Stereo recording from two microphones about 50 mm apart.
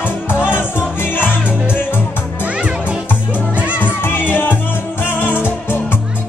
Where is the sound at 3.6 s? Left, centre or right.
Right.